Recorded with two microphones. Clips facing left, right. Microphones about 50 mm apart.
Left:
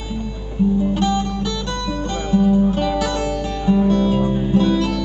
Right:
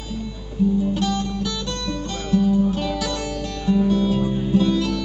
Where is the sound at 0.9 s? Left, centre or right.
Centre.